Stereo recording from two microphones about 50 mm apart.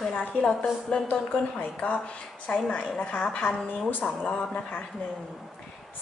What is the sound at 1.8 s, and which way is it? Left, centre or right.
A woman's voice, left.